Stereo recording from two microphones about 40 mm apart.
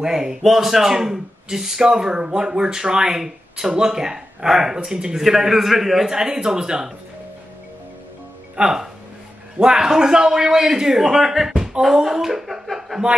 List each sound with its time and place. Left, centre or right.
0.0 s a man's voice: centre
8.6 s a man's voice: right
12.6 s chuckle: centre